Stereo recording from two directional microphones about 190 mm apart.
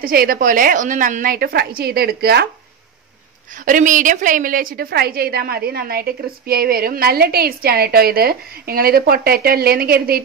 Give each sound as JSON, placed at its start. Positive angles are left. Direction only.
{"t": 0.0, "sound": "a woman's voice", "side_deg": -50}
{"t": 3.6, "sound": "a woman's voice", "side_deg": -45}